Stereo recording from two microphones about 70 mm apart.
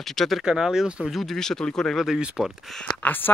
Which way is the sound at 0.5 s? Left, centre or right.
Centre.